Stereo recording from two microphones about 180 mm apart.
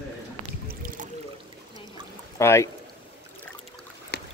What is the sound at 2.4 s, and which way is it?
Speech, 15° left (ahead or behind).